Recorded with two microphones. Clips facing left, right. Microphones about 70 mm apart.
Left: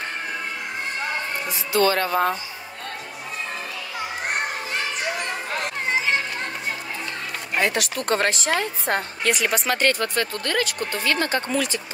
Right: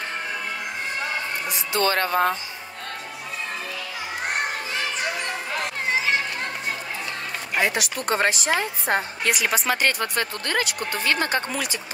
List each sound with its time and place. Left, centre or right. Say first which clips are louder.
1.8 s speech: left 2 dB; right
7.5 s a woman's voice: left 1 dB; centre
10.1 s speech: left 1 dB; right
10.6 s a woman's voice: left 1 dB; centre
11.1 s speech: even; right
11.5 s a woman's voice: left 4 dB; centre